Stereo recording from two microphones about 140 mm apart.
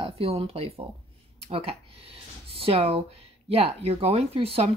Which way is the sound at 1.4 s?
45° right (ahead or behind).